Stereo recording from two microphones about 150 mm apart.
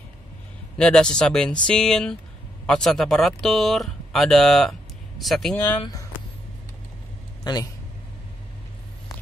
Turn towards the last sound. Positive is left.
turn(degrees=30)  # may be behind; listen again after turning